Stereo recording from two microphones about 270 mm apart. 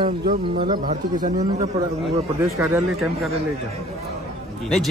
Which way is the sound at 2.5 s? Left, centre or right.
Centre.